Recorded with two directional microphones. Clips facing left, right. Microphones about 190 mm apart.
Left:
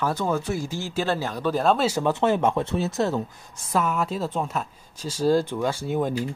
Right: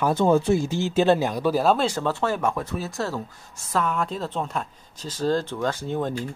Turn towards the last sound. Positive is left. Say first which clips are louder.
# left 2 dB
turn(degrees=10)  # may be behind; listen again after turning